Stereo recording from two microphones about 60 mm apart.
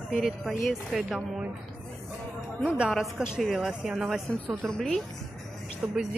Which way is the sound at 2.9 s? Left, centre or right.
Centre.